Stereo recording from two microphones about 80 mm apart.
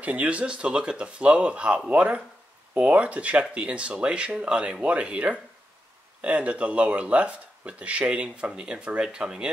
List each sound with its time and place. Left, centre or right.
0.0 s speech: centre